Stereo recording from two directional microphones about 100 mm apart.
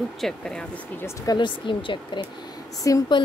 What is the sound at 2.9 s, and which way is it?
Speech, 35° left (ahead or behind).